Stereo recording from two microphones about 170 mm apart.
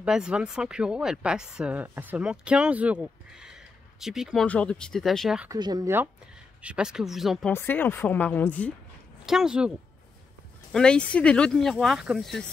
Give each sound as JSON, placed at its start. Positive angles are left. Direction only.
{"t": 0.0, "sound": "speech", "side_deg": -5}
{"t": 5.5, "sound": "speech", "side_deg": -20}
{"t": 6.6, "sound": "speech", "side_deg": -5}
{"t": 7.5, "sound": "speech", "side_deg": 10}
{"t": 9.2, "sound": "speech", "side_deg": -5}
{"t": 10.7, "sound": "speech", "side_deg": 5}